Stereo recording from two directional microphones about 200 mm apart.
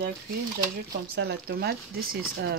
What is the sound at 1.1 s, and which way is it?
Speech, 50° right (ahead or behind).